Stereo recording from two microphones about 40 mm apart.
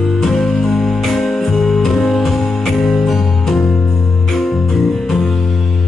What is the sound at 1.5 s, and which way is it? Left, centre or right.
Music, centre.